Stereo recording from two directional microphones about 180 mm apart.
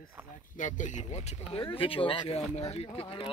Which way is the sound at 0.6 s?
45° left (ahead or behind).